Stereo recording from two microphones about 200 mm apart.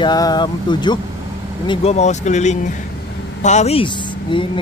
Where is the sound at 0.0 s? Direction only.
20° left (ahead or behind).